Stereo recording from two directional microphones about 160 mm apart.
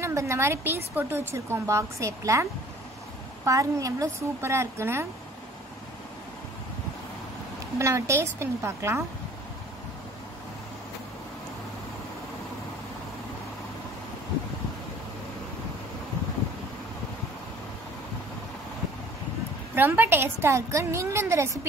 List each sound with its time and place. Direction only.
0.0 s a woman's voice: 20° right (ahead or behind)
3.4 s a woman's voice: 20° right (ahead or behind)
7.8 s a woman's voice: 15° right (ahead or behind)
19.7 s a woman's voice: 10° right (ahead or behind)